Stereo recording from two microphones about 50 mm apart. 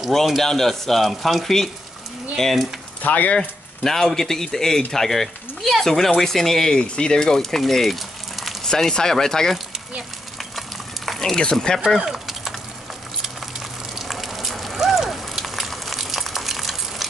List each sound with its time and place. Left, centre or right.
0.4 s speech: centre
3.0 s speech: left
3.3 s speech: centre
8.6 s speech: centre
11.1 s speech: centre
12.1 s a sound: centre
13.9 s a sound: centre